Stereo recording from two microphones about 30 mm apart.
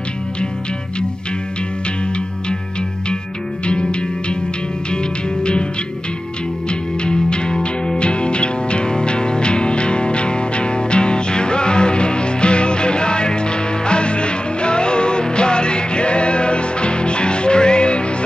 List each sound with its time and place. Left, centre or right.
3.6 s music: left
6.7 s music: left